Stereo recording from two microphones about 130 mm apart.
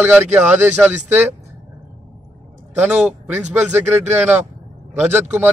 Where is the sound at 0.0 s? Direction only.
10° right (ahead or behind).